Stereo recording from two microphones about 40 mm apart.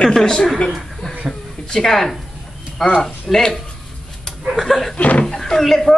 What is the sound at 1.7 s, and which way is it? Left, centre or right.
Speech, centre.